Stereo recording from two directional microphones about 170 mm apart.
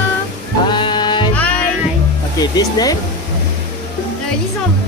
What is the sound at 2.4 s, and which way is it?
Speech, 25° left (ahead or behind).